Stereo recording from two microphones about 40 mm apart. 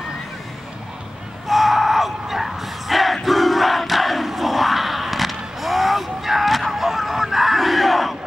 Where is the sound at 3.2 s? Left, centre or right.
Centre.